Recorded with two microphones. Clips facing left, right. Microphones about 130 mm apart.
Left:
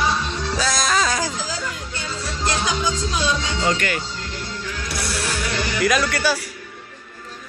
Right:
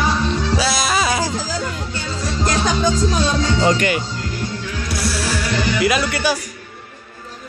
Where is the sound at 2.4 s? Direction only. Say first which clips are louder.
Right 4 dB; 45° right (ahead or behind).